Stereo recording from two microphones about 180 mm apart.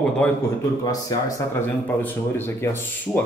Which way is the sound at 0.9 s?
20° left (ahead or behind).